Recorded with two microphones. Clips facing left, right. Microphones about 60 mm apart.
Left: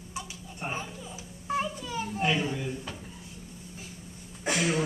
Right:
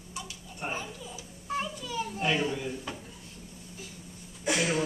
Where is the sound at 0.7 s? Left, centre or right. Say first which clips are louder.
Left 1 dB; left.